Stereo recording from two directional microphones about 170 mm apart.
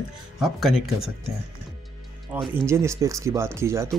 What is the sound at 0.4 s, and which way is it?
Speech, centre (ahead or behind).